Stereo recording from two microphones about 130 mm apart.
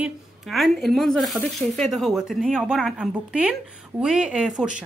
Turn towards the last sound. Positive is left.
turn(degrees=-5)  # may be behind; listen again after turning